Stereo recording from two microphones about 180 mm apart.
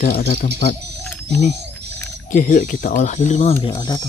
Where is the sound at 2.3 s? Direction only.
50° left (ahead or behind).